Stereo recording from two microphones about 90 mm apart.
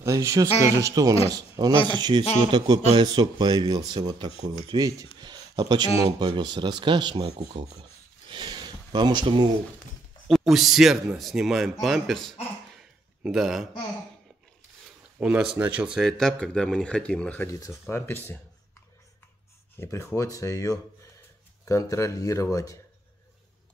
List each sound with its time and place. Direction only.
0.0 s speech: 35° right (ahead or behind)
1.6 s speech: 60° right (ahead or behind)
8.3 s a sound: 55° right (ahead or behind)
10.2 s speech: centre (ahead or behind)
15.1 s speech: 15° right (ahead or behind)
16.1 s speech: 5° left (ahead or behind)
17.5 s speech: 35° left (ahead or behind)
19.8 s speech: 25° left (ahead or behind)